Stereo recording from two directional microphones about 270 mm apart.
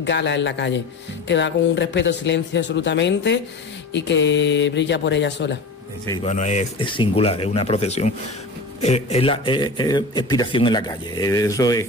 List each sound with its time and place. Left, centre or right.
0.0 s speech: left
6.0 s speech: centre